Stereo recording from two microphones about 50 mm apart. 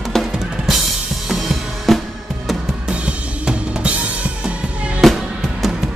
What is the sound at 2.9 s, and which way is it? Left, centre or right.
Drum kit, right.